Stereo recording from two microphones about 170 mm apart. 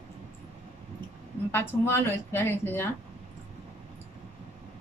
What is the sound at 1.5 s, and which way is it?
A woman's voice, 15° left (ahead or behind).